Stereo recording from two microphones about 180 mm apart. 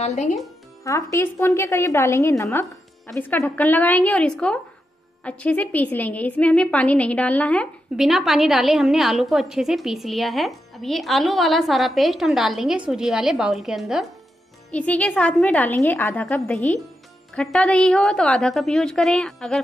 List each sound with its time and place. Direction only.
0.0 s speech: 40° left (ahead or behind)
0.8 s a woman's voice: 15° left (ahead or behind); by 14.0 s 5° right (ahead or behind)
14.7 s a woman's voice: 5° left (ahead or behind)